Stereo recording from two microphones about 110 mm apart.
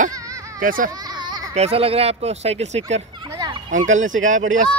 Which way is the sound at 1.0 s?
40° right (ahead or behind).